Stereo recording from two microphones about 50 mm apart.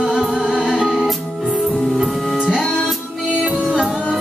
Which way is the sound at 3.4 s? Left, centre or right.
Right.